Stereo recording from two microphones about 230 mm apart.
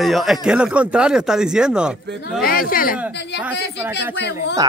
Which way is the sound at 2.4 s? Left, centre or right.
Left.